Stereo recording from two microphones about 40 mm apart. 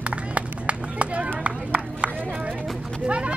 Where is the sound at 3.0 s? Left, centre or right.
Right.